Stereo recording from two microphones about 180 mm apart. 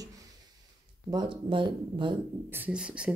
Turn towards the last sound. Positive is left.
turn(degrees=-5)  # may be behind; listen again after turning